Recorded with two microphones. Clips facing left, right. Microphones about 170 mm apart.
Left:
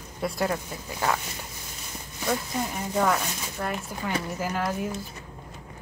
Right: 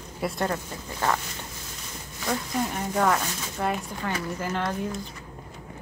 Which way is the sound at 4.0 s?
10° left (ahead or behind).